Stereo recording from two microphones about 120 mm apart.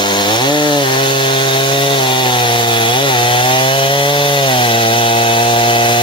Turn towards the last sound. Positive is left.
turn(degrees=45)  # may be behind; listen again after turning